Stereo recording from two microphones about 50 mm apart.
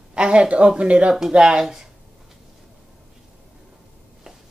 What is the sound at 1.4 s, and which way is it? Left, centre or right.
Speech, centre.